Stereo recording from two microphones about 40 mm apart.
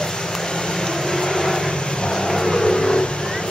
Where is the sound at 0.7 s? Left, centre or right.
Centre.